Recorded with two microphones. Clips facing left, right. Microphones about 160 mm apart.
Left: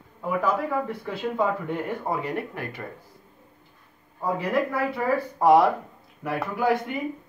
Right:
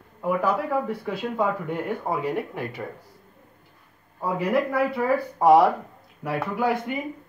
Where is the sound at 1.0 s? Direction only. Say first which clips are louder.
Even; 5° right (ahead or behind).